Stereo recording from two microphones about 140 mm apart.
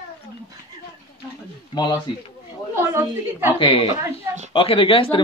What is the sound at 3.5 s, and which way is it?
Speech, 40° left (ahead or behind).